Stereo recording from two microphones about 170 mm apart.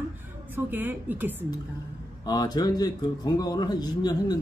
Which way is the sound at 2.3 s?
25° left (ahead or behind).